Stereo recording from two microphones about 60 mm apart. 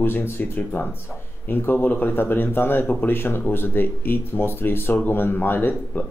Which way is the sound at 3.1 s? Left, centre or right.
Left.